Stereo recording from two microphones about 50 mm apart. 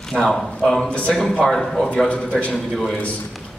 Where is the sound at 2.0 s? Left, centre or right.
Left.